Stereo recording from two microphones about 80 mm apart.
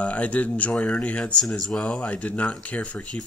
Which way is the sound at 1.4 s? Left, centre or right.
Centre.